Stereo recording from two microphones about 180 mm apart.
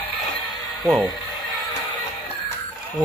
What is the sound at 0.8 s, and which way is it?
Speech, centre (ahead or behind).